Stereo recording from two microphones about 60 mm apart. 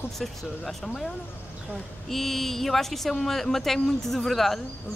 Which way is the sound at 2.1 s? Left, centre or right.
Centre.